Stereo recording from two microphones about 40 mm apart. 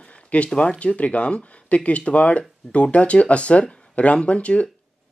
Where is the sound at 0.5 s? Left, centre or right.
Left.